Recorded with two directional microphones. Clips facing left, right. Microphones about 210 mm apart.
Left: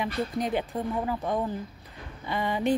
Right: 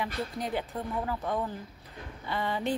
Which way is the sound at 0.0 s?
20° left (ahead or behind).